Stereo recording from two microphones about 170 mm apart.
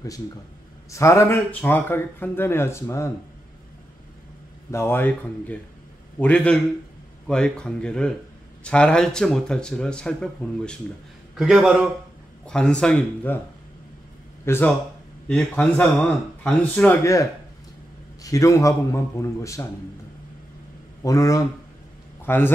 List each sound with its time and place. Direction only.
0.9 s speech: 15° left (ahead or behind)
4.6 s speech: 15° left (ahead or behind)
14.4 s a man's voice: 15° left (ahead or behind)
21.0 s a man's voice: 20° left (ahead or behind)